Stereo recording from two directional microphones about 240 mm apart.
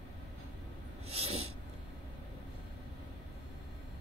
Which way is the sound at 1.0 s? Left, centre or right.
Right.